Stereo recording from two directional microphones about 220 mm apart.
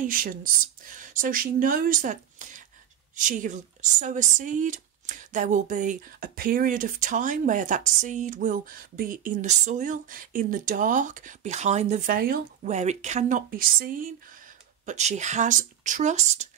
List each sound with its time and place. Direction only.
0.0 s speech: 40° right (ahead or behind)